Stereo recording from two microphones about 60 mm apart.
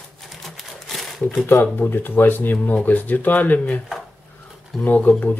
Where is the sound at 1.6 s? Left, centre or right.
Left.